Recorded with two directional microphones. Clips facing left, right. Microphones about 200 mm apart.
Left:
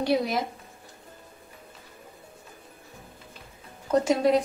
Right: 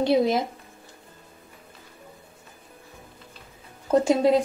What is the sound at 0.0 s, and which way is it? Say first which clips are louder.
Speech: right 4 dB; 25° right (ahead or behind).